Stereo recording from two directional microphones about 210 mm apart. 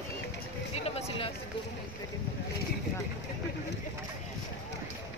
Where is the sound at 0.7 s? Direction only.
30° left (ahead or behind).